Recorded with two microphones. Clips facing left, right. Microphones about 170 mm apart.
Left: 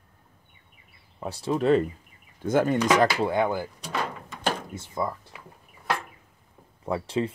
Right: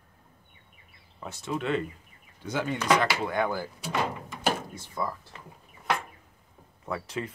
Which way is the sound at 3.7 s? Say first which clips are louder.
Right 1 dB; 5° right (ahead or behind).